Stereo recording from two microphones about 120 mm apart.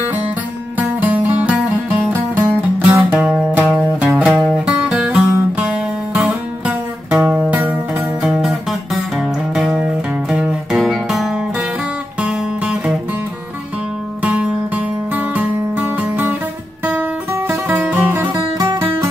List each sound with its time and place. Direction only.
0.7 s music: 15° right (ahead or behind)
14.2 s music: 10° right (ahead or behind)
18.3 s music: 30° right (ahead or behind)